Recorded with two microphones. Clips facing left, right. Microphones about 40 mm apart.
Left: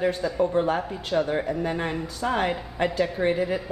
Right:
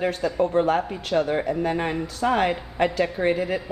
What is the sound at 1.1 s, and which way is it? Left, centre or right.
A woman's voice, centre.